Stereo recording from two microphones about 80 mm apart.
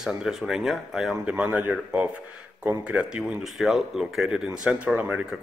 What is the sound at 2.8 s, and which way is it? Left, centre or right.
A man's voice, centre.